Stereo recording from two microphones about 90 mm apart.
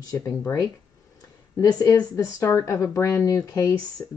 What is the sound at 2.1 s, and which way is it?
Speech, 30° left (ahead or behind).